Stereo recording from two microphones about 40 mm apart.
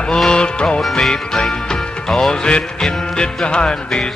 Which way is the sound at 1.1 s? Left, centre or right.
Centre.